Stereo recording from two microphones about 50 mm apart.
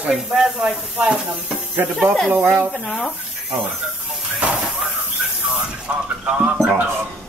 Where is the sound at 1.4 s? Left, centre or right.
Right.